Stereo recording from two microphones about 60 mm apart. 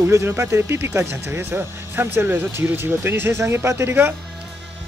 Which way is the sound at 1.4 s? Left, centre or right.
Right.